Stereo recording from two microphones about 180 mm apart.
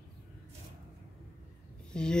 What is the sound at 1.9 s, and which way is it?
Speech, 5° left (ahead or behind).